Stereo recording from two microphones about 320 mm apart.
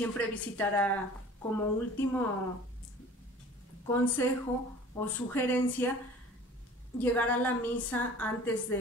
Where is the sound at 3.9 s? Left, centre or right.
Centre.